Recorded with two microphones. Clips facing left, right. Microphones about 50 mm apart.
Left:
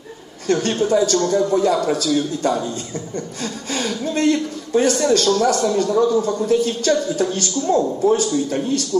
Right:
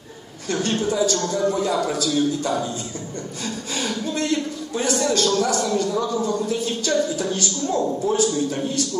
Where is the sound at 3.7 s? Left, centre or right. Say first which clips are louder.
Left 4 dB; left.